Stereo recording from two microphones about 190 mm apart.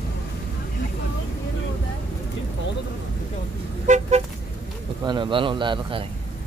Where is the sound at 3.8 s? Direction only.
40° right (ahead or behind).